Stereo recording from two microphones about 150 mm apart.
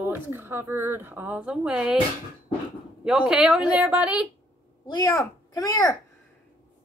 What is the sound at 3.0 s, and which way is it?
Speech, 5° right (ahead or behind).